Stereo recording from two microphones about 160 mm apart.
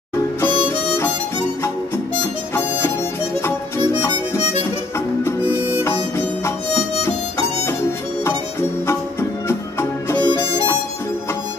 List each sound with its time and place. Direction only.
5.9 s music: 15° left (ahead or behind)
9.5 s music: 15° left (ahead or behind)